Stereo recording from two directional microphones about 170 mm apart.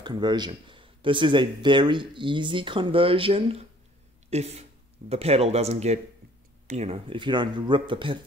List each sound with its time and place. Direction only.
0.0 s speech: 25° right (ahead or behind)